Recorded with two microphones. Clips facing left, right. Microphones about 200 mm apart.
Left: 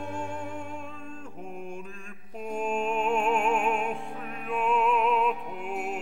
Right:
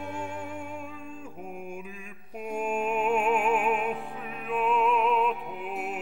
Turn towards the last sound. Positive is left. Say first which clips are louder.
# left 1 dB
turn(degrees=0)  # may be behind; listen again after turning